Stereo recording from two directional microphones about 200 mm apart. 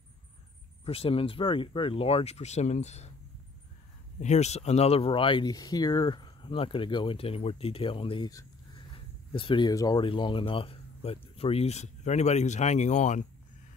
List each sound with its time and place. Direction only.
0.8 s speech: 30° left (ahead or behind)
4.2 s speech: 35° left (ahead or behind)